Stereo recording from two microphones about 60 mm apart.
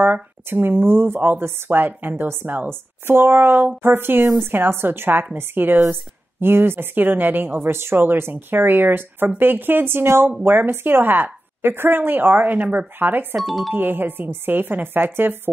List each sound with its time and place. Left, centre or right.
0.0 s speech: right
13.4 s speech: centre
13.7 s speech: right